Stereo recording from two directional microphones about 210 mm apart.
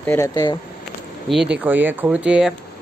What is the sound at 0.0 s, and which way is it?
Speech, 15° left (ahead or behind).